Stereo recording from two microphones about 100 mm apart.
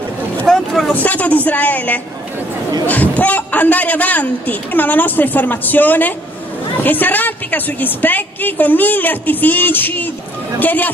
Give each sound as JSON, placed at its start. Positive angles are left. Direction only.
{"t": 0.5, "sound": "vehicle", "side_deg": 5}
{"t": 0.9, "sound": "a man's voice", "side_deg": 15}